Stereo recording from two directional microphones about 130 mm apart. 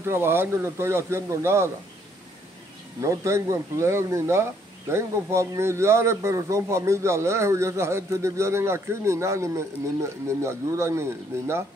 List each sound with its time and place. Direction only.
0.0 s speech: 20° right (ahead or behind)
3.0 s speech: 25° right (ahead or behind)